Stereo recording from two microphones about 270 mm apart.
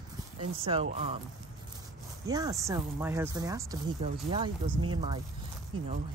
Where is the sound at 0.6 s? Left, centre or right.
Right.